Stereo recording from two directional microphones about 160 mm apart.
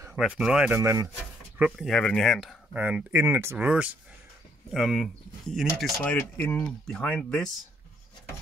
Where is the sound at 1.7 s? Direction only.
5° left (ahead or behind).